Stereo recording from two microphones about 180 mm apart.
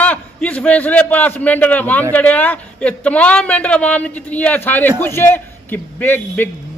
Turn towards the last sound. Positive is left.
turn(degrees=10)  # may be behind; listen again after turning